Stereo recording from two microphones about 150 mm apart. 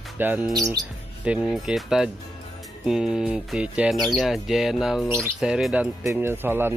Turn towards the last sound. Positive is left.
turn(degrees=-15)  # may be behind; listen again after turning